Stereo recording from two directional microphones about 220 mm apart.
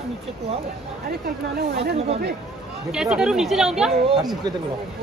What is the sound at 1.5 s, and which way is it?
Speech, 45° right (ahead or behind).